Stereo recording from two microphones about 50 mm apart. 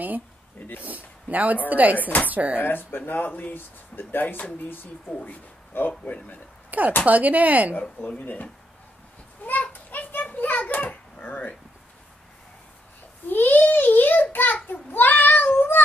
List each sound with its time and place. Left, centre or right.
0.6 s speech: left
0.8 s speech: right
2.0 s speech: left
2.2 s speech: right
2.6 s speech: left
6.7 s speech: right
8.0 s speech: left
9.4 s children playing: left
10.9 s a sound: left
13.3 s a sound: left
14.3 s child singing: left